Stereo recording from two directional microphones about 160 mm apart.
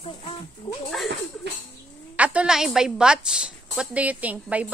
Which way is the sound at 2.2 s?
10° right (ahead or behind).